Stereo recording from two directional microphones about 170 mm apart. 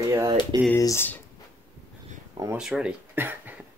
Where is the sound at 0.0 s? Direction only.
15° right (ahead or behind).